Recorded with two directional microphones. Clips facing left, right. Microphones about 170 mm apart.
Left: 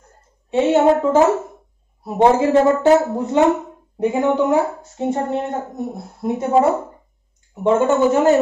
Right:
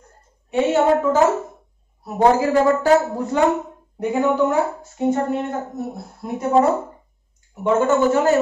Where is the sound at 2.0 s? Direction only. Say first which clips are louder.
Left 2 dB; 25° left (ahead or behind).